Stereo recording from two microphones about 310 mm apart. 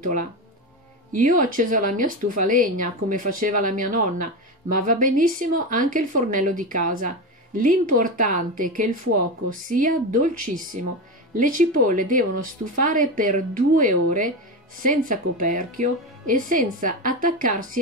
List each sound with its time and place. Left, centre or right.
0.0 s speech: right
9.7 s speech: right